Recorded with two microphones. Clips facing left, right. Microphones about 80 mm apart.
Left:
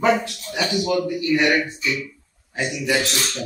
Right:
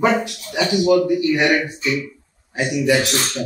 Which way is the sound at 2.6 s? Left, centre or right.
Right.